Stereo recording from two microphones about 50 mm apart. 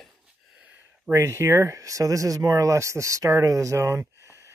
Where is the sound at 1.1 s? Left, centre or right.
Right.